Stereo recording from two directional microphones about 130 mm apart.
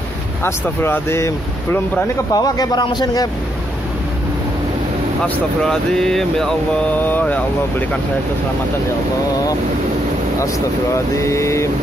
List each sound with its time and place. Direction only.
0.4 s speech: 20° left (ahead or behind); by 3.3 s 35° left (ahead or behind)
5.2 s speech: 5° left (ahead or behind)
11.1 s speech: 20° left (ahead or behind)